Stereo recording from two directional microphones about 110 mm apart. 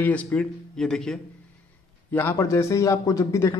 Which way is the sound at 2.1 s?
20° left (ahead or behind).